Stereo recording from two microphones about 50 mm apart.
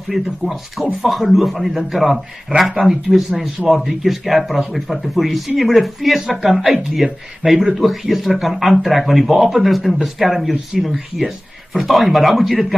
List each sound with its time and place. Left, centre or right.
0.1 s speech: centre